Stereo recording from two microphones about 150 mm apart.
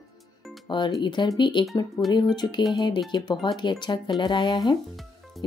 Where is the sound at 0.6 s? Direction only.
30° left (ahead or behind).